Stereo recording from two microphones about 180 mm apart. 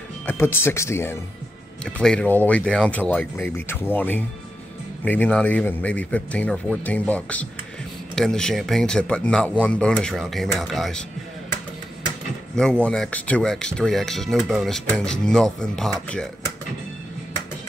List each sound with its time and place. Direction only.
0.3 s a man's voice: 15° left (ahead or behind)
12.5 s speech: 5° left (ahead or behind)